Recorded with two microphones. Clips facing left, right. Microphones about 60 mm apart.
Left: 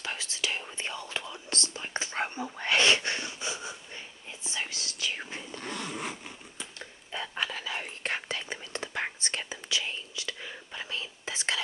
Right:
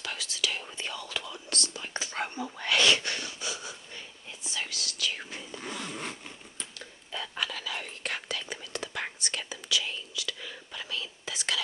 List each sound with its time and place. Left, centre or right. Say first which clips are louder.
0.0 s whispering: even; left
5.5 s zipper: even; centre
7.1 s whispering: left 1 dB; left